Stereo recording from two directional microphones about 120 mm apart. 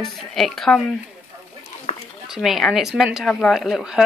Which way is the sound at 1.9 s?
55° left (ahead or behind).